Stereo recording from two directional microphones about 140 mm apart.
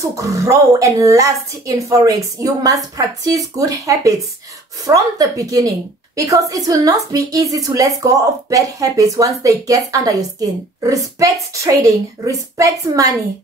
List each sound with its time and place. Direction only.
0.0 s a woman's voice: 20° right (ahead or behind)